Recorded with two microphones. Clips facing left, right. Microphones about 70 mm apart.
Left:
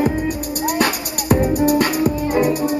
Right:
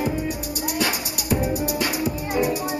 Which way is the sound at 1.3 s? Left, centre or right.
Left.